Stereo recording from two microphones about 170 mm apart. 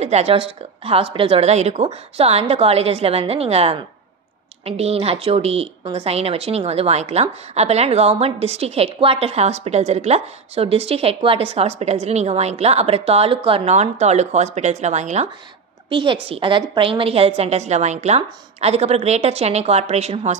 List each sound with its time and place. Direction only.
0.0 s a woman's voice: 40° right (ahead or behind)
15.9 s a woman's voice: 30° right (ahead or behind)